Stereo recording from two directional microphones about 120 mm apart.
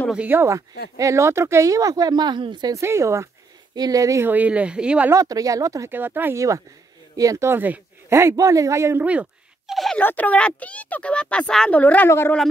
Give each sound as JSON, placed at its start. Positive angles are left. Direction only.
{"t": 0.1, "sound": "speech", "side_deg": -15}
{"t": 2.7, "sound": "speech", "side_deg": -25}
{"t": 4.3, "sound": "speech", "side_deg": -10}
{"t": 5.1, "sound": "speech", "side_deg": -30}
{"t": 9.0, "sound": "a sound", "side_deg": -10}
{"t": 9.9, "sound": "speech", "side_deg": 15}